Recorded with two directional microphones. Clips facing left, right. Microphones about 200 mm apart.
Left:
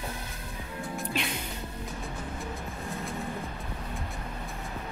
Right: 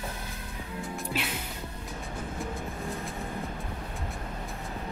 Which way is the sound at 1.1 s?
5° right (ahead or behind).